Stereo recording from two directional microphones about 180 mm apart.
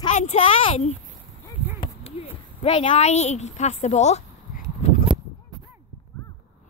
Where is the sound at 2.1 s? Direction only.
35° left (ahead or behind).